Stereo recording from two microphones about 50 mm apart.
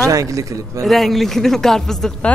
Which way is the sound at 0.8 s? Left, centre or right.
Centre.